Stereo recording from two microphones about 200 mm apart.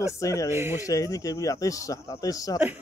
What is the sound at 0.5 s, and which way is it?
Speech, 15° right (ahead or behind).